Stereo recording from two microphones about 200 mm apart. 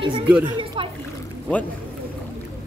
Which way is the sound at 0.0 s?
25° right (ahead or behind).